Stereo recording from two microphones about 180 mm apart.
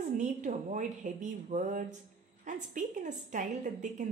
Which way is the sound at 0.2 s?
45° right (ahead or behind).